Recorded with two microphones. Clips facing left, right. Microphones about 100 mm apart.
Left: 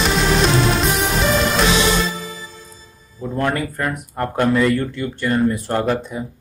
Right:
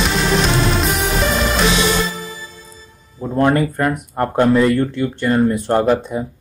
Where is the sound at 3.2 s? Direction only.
20° right (ahead or behind).